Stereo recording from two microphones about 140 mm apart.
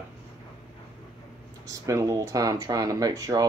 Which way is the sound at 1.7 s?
20° right (ahead or behind).